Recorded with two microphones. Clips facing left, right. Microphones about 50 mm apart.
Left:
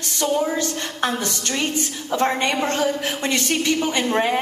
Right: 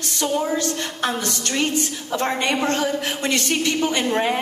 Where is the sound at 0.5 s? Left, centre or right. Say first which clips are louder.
Right 1 dB; left.